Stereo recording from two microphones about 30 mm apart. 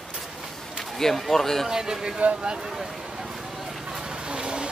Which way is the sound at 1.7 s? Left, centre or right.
Right.